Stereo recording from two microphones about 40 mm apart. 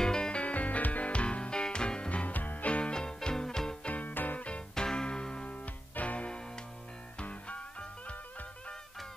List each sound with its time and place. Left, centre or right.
0.0 s music: centre
0.4 s music: left
2.0 s music: left; by 3.7 s centre
3.8 s music: left
4.1 s music: left
4.7 s music: left